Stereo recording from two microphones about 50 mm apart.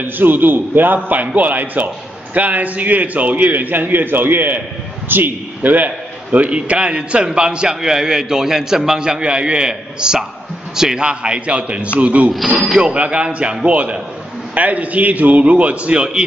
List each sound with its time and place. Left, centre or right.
0.0 s a man's voice: right
5.9 s a man's voice: right